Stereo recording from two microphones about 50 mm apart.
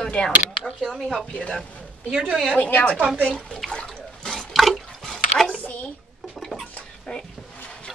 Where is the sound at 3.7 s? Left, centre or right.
Centre.